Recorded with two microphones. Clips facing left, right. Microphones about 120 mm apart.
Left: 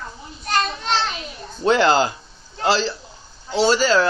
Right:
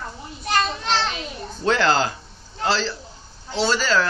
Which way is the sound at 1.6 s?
15° left (ahead or behind).